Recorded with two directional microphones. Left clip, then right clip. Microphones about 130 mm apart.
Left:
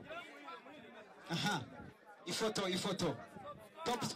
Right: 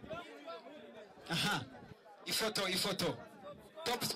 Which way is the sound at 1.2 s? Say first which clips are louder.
Right 3 dB; 25° right (ahead or behind).